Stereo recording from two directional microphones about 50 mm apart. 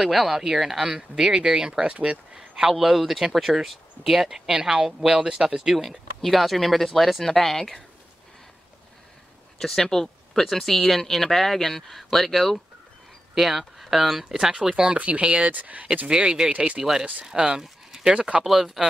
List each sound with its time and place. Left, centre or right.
0.0 s speech: centre; by 2.1 s right
2.3 s a sound: centre
2.7 s speech: centre
9.6 s speech: centre
14.9 s speech: right
16.1 s speech: centre
17.3 s speech: centre
18.4 s speech: centre